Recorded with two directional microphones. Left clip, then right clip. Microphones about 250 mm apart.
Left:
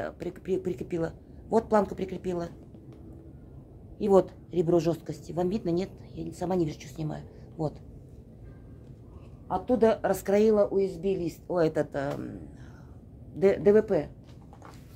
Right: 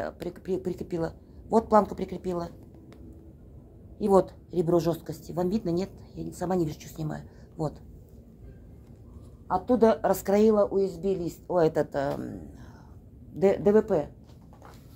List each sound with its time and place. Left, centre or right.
0.0 s a woman's voice: centre
4.0 s a woman's voice: centre
9.5 s a woman's voice: centre